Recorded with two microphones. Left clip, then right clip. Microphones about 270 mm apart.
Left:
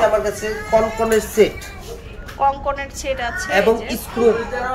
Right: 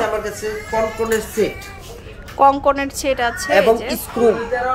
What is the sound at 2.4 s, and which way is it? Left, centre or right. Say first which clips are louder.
Speech: right 5 dB; right.